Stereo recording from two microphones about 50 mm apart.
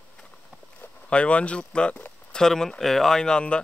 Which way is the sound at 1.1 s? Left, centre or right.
Left.